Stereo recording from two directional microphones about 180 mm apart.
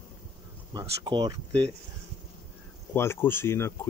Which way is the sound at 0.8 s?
25° right (ahead or behind).